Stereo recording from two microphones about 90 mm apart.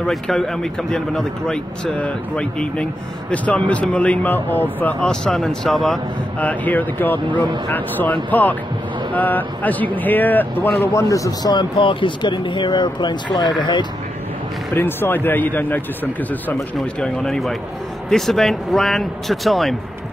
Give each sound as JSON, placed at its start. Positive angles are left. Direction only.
{"t": 0.0, "sound": "a man's voice", "side_deg": 5}
{"t": 5.0, "sound": "speech", "side_deg": 5}
{"t": 6.4, "sound": "speech", "side_deg": 20}
{"t": 10.9, "sound": "a man's voice", "side_deg": 35}
{"t": 11.5, "sound": "speech", "side_deg": 70}
{"t": 14.7, "sound": "speech", "side_deg": 25}
{"t": 17.0, "sound": "a man's voice", "side_deg": 5}